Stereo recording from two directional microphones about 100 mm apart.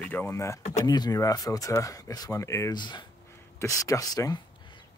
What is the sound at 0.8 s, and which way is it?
Speech, 40° left (ahead or behind).